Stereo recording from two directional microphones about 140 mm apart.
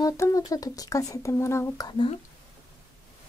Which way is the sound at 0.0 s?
25° left (ahead or behind).